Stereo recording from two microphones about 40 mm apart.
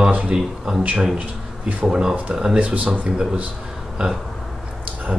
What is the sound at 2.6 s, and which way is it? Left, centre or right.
Speech, right.